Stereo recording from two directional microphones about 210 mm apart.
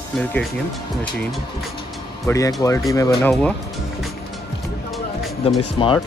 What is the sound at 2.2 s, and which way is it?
Speech, 15° left (ahead or behind).